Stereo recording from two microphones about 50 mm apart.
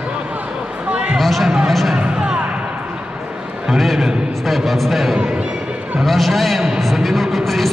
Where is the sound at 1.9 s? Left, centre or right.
Right.